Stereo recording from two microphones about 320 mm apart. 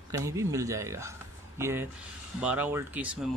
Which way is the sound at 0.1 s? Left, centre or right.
Centre.